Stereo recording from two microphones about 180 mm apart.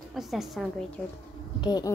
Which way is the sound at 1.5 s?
25° left (ahead or behind).